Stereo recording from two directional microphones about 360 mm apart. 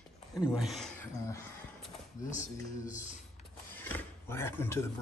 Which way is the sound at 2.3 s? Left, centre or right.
Left.